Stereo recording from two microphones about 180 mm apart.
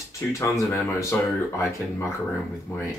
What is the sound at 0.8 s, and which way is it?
Speech, 15° left (ahead or behind).